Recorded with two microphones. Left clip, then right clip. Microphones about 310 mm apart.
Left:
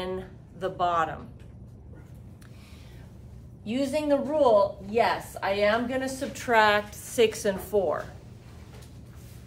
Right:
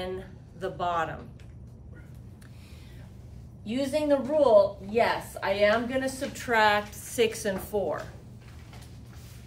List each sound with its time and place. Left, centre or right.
0.0 s music: centre
3.6 s a woman's voice: centre